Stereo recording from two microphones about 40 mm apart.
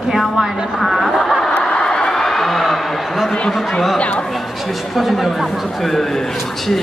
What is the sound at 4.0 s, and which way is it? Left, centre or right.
Speech, left.